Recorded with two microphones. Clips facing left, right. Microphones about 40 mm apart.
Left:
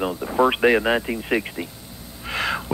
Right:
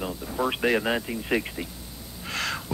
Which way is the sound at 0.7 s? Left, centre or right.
Centre.